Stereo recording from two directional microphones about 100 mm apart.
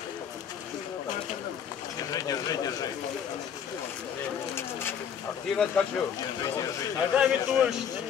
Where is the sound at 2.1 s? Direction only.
40° left (ahead or behind).